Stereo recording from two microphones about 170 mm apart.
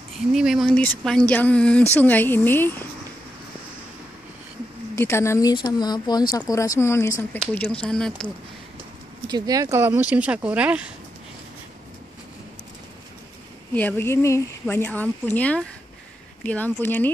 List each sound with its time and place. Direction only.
0.3 s a woman's voice: centre (ahead or behind)
4.9 s a woman's voice: 15° left (ahead or behind)
7.8 s speech: 5° left (ahead or behind)
9.3 s speech: 20° right (ahead or behind)
13.7 s a woman's voice: 10° left (ahead or behind)